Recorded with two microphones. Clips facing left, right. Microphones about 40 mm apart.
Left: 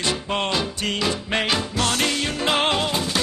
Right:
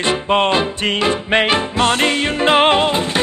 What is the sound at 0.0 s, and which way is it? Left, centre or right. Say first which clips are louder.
Music: right 8 dB; right.